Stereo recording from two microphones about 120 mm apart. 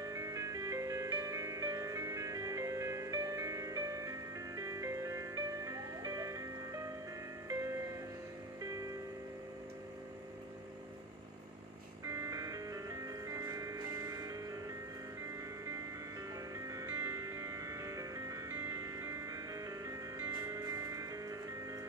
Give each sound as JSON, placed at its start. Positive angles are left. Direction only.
{"t": 0.0, "sound": "music", "side_deg": -30}
{"t": 12.0, "sound": "music", "side_deg": -25}
{"t": 16.5, "sound": "music", "side_deg": -30}